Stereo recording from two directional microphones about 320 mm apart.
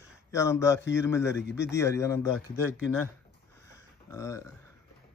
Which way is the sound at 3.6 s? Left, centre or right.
Centre.